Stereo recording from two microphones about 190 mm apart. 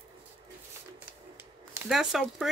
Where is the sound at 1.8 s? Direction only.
Centre (ahead or behind).